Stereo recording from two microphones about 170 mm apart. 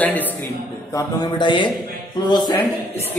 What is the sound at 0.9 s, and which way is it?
Speech, 20° left (ahead or behind).